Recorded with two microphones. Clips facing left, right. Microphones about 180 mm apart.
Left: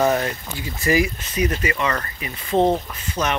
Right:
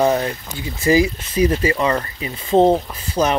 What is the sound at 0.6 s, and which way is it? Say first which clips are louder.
Speech: right 4 dB; 25° right (ahead or behind).